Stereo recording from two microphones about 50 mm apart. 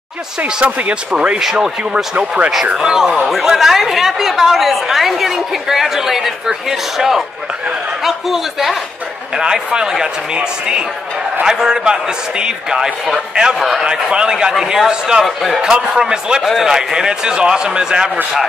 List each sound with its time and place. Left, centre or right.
0.7 s speech: right
1.1 s speech: right
1.4 s a man's voice: centre
2.1 s speech: right
2.5 s a man's voice: centre
9.4 s a man's voice: centre
15.2 s speech: centre
15.6 s a man's voice: centre